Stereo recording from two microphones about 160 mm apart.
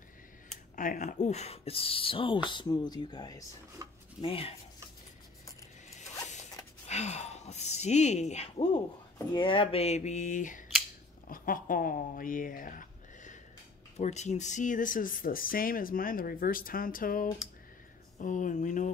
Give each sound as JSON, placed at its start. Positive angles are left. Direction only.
{"t": 0.7, "sound": "speech", "side_deg": 50}
{"t": 4.2, "sound": "speech", "side_deg": 35}
{"t": 6.9, "sound": "a sound", "side_deg": 45}
{"t": 9.3, "sound": "speech", "side_deg": 30}